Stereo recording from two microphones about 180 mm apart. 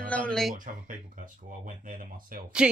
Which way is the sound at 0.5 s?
50° right (ahead or behind).